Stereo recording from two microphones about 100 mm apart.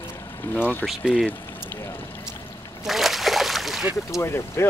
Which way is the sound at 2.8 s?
Centre (ahead or behind).